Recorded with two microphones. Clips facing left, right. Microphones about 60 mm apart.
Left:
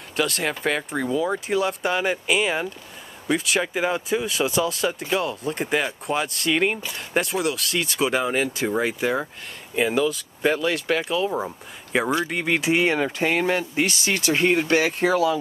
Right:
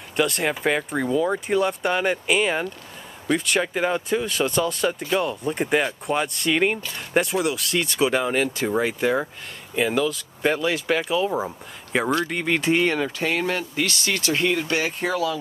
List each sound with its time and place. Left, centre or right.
0.1 s speech: centre; by 14.5 s left
14.5 s speech: left
15.0 s speech: centre